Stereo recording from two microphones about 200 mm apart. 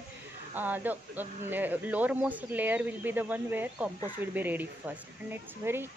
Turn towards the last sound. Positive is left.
turn(degrees=-10)  # may be behind; listen again after turning